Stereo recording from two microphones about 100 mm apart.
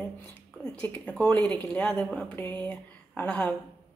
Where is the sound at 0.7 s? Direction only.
10° left (ahead or behind).